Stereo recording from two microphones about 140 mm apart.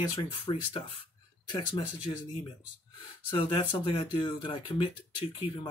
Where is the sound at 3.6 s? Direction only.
35° left (ahead or behind).